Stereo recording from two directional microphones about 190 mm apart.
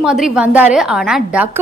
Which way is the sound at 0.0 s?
5° right (ahead or behind).